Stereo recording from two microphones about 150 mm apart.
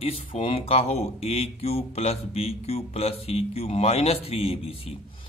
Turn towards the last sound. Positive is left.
turn(degrees=40)  # may be behind; listen again after turning